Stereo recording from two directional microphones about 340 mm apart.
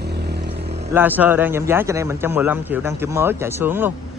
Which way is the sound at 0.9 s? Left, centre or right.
Centre.